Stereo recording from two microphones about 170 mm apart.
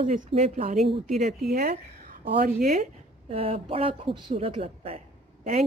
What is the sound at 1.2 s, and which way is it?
A woman's voice, 50° right (ahead or behind).